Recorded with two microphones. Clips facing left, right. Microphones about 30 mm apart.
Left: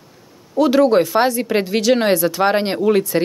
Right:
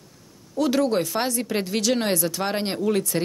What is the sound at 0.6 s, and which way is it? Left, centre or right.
Speech, left.